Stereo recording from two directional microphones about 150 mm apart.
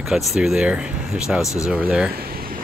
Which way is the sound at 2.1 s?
80° right.